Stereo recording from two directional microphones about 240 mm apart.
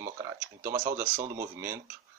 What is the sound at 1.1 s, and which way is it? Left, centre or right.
Speech, right.